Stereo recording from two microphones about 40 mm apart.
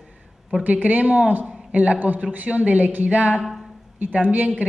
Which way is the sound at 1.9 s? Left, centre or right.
Right.